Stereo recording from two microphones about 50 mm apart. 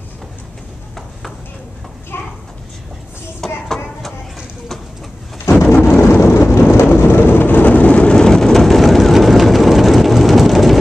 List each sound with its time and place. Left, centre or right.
2.1 s clip-clop: left
3.3 s a sound: centre
5.6 s thunder: left
6.1 s vehicle: left
6.6 s thunder: left
7.0 s vehicle: left; by 10.8 s centre